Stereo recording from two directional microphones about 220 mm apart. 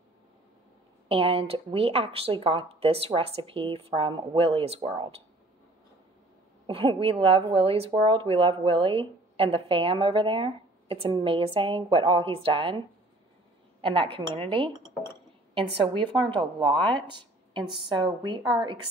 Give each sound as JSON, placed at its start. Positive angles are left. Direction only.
{"t": 1.0, "sound": "speech", "side_deg": -25}
{"t": 6.7, "sound": "speech", "side_deg": -25}